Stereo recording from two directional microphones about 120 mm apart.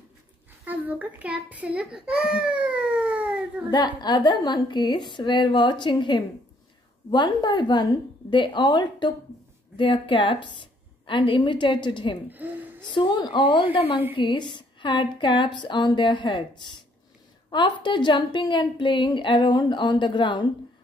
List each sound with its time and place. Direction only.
0.7 s a child's voice: 15° right (ahead or behind)
3.7 s a woman's voice: 35° left (ahead or behind)
12.3 s speech: 15° right (ahead or behind)
12.8 s a woman's voice: 40° left (ahead or behind)
13.7 s a woman's voice: 50° left (ahead or behind)